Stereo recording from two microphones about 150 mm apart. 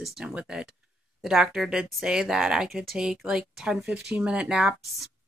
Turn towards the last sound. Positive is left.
turn(degrees=-5)  # may be behind; listen again after turning